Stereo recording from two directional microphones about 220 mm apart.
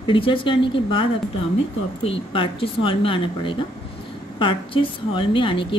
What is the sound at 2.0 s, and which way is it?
A woman's voice, 25° left (ahead or behind).